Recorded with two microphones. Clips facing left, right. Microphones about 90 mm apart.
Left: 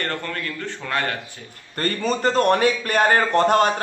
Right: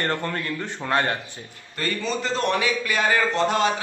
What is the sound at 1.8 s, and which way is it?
A man's voice, 45° left (ahead or behind).